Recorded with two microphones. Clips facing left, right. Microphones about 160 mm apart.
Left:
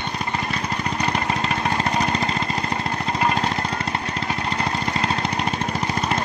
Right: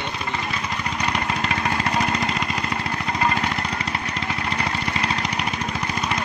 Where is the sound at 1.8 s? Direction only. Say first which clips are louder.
Left 1 dB; 30° left (ahead or behind).